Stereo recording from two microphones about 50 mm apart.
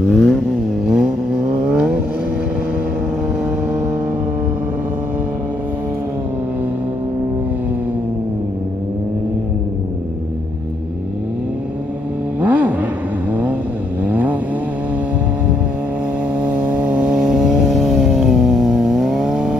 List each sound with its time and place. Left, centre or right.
0.1 s vehicle: centre
0.8 s vehicle: centre
12.4 s a sound: right
13.3 s vehicle: right
16.3 s vehicle: right